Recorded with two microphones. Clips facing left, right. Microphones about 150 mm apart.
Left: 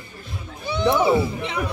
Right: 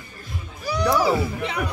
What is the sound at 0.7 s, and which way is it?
A child's voice, 25° left (ahead or behind).